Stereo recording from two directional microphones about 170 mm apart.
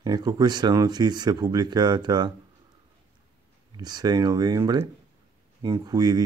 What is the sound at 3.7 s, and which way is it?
Speech, 25° right (ahead or behind).